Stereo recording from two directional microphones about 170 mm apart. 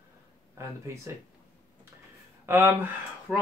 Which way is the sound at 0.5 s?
15° right (ahead or behind).